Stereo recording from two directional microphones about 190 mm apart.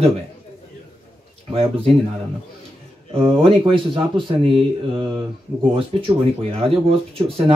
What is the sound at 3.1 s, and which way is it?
Speech, 30° right (ahead or behind).